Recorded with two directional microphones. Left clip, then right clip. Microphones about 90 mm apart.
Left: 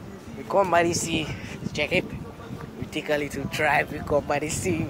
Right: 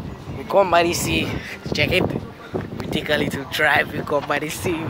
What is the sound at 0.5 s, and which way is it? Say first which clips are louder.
Speech: right 5 dB; 45° right (ahead or behind).